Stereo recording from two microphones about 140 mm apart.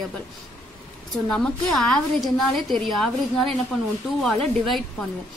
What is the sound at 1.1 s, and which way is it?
A woman's voice, 5° left (ahead or behind).